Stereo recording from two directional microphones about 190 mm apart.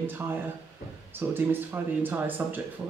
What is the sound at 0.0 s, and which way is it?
A man's voice, 10° right (ahead or behind).